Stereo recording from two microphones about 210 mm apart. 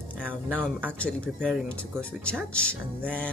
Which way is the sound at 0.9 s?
5° left (ahead or behind).